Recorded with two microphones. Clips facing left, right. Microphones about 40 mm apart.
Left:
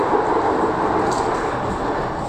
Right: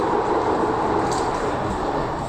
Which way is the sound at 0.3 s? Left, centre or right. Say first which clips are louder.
Left 2 dB; centre.